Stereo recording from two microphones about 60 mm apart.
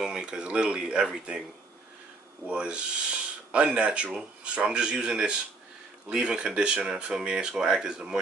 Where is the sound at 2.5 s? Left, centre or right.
Centre.